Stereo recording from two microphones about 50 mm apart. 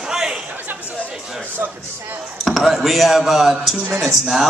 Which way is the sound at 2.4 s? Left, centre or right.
Centre.